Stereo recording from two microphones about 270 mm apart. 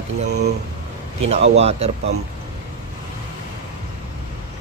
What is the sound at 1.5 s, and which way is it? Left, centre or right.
Speech, right.